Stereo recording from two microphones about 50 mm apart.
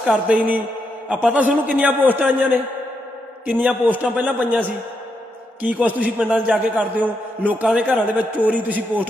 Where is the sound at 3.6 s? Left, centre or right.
Right.